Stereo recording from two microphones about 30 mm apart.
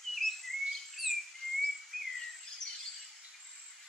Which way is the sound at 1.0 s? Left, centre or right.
Centre.